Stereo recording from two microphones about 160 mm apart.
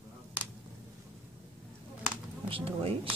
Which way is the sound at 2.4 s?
35° right (ahead or behind).